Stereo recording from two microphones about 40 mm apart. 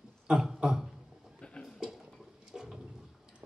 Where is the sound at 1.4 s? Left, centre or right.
Left.